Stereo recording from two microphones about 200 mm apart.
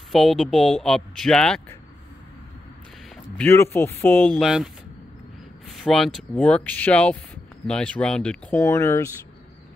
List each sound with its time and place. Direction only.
0.1 s speech: centre (ahead or behind)
3.3 s speech: 10° left (ahead or behind)
5.7 s speech: centre (ahead or behind)